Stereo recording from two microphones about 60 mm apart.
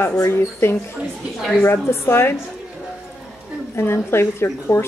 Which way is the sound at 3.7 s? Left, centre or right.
Left.